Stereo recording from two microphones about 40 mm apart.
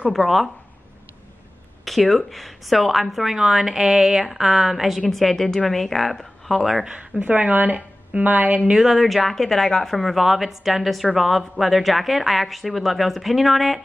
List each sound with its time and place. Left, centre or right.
0.1 s speech: centre
1.9 s a woman's voice: centre
5.1 s a woman's voice: centre
6.9 s speech: right
8.7 s speech: centre